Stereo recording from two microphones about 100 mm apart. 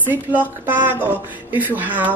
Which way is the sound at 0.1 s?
20° right (ahead or behind).